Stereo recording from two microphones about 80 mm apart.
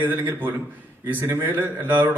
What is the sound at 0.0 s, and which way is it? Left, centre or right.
A man's voice, right.